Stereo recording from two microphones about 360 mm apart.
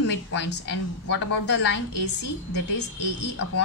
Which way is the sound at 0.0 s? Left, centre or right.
Left.